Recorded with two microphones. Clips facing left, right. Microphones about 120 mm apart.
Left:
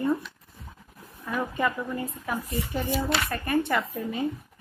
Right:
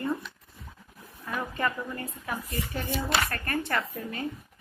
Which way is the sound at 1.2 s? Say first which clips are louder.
Left 3 dB; 10° left (ahead or behind).